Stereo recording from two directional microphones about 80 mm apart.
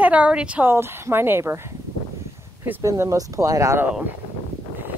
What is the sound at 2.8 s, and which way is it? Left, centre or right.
Speech, right.